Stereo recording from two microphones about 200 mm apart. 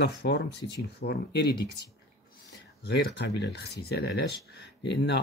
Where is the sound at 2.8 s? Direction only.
55° left (ahead or behind).